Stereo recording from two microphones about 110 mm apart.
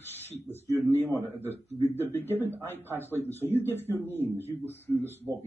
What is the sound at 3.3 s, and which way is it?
Speech, 20° right (ahead or behind).